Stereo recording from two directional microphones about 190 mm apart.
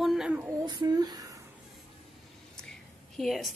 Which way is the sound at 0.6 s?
20° right (ahead or behind).